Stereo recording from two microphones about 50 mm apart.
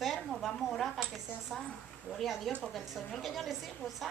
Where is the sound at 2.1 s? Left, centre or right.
Centre.